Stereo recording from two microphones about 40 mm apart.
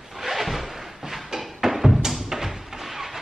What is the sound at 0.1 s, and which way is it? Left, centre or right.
Music, centre.